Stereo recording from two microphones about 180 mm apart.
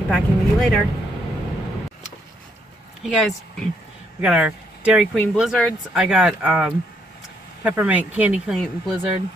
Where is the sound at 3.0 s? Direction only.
Centre (ahead or behind).